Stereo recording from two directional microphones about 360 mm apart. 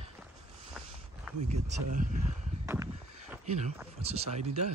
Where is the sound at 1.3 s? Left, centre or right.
Centre.